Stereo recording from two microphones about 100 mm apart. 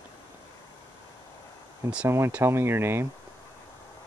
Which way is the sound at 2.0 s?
25° right (ahead or behind).